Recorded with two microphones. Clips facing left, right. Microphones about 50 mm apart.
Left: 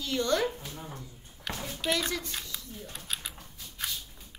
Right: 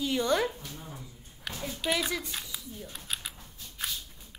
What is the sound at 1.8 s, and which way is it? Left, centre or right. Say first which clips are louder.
Speech: even; centre.